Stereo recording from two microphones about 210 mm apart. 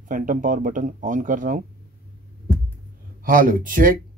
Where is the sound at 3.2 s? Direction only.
40° right (ahead or behind).